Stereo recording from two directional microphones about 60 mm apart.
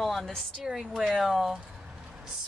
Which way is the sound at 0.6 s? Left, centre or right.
Centre.